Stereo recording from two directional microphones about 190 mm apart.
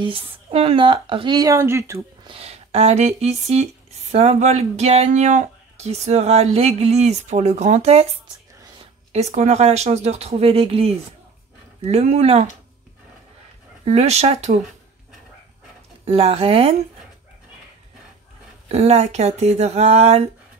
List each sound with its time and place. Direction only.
0.0 s speech: 30° right (ahead or behind)
2.2 s speech: 30° right (ahead or behind)
9.1 s speech: 35° right (ahead or behind)
13.8 s speech: 35° right (ahead or behind)
16.1 s speech: 30° right (ahead or behind)
18.7 s speech: 35° right (ahead or behind)